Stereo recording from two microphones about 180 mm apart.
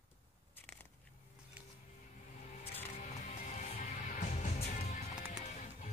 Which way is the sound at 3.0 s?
40° left (ahead or behind).